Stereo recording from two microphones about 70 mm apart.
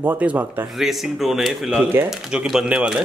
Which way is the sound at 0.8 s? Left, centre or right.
Centre.